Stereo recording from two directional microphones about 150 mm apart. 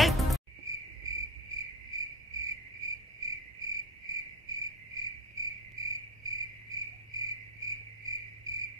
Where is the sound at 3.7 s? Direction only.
25° right (ahead or behind).